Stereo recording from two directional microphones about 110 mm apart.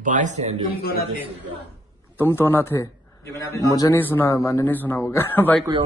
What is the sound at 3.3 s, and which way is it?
Speech, 30° left (ahead or behind).